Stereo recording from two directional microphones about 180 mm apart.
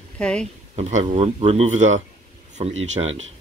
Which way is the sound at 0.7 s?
40° right (ahead or behind).